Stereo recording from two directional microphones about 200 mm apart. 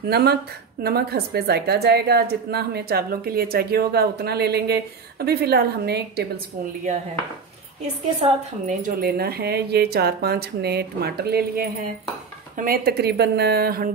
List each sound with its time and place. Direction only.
0.1 s a woman's voice: 55° right (ahead or behind)
8.2 s a woman's voice: 40° right (ahead or behind)